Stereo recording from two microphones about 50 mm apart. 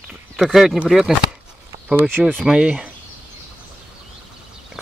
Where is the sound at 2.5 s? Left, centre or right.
Right.